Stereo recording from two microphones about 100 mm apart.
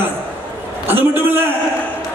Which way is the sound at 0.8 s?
20° right (ahead or behind).